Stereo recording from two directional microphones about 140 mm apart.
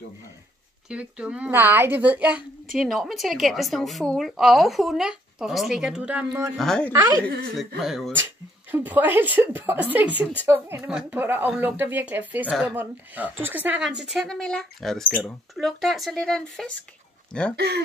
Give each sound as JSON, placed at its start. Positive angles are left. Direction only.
{"t": 0.8, "sound": "speech", "side_deg": -10}
{"t": 2.8, "sound": "a woman's voice", "side_deg": 0}
{"t": 6.5, "sound": "a woman's voice", "side_deg": 5}
{"t": 6.9, "sound": "a woman's voice", "side_deg": -20}
{"t": 7.5, "sound": "a woman's voice", "side_deg": 0}
{"t": 8.7, "sound": "speech", "side_deg": -15}
{"t": 12.4, "sound": "a woman's voice", "side_deg": 0}
{"t": 12.7, "sound": "a woman's voice", "side_deg": -10}